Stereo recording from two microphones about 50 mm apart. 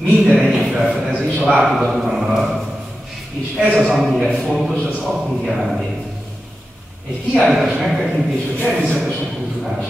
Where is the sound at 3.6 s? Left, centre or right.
Centre.